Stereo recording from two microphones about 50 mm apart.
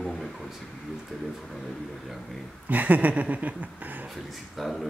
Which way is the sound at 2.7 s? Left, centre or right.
Right.